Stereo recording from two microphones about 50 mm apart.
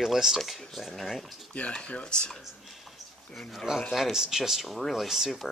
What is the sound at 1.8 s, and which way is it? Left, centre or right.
Speech, left.